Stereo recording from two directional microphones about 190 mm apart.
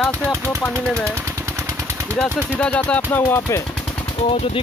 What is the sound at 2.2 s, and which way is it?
Speech, 5° left (ahead or behind).